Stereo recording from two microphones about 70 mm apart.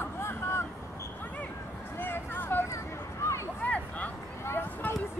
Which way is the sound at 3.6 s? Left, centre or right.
Left.